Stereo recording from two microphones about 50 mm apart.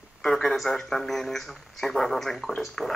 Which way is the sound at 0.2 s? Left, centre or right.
Centre.